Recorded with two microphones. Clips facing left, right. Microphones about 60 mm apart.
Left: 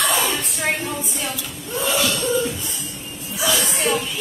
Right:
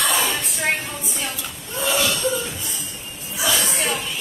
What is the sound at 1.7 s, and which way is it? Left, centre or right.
Cough, centre.